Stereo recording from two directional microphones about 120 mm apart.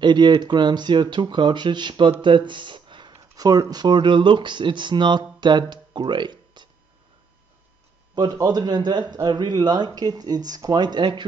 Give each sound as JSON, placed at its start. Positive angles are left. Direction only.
{"t": 0.0, "sound": "speech", "side_deg": -40}
{"t": 5.4, "sound": "a sound", "side_deg": -40}
{"t": 8.1, "sound": "speech", "side_deg": -35}